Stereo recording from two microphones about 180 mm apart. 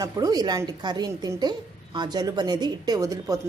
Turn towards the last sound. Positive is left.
turn(degrees=-20)  # may be behind; listen again after turning